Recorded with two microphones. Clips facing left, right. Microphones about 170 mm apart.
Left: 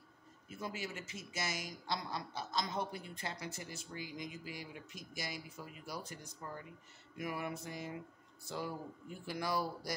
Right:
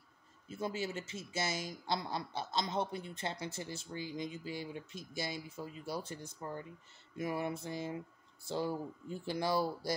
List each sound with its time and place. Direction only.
0.5 s speech: 25° right (ahead or behind)